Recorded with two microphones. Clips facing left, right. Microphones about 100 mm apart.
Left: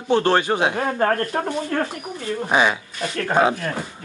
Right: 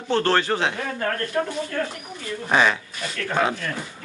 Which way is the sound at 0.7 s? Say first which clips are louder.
Left 6 dB; 50° left (ahead or behind).